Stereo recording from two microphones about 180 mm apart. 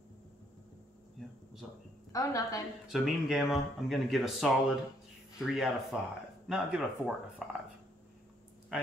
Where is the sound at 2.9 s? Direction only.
Centre (ahead or behind).